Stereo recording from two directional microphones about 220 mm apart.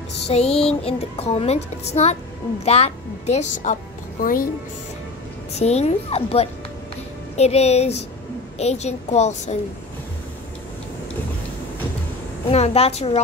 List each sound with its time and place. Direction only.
0.6 s a woman's voice: 25° left (ahead or behind)
5.5 s a woman's voice: 30° left (ahead or behind)
12.4 s speech: 30° left (ahead or behind)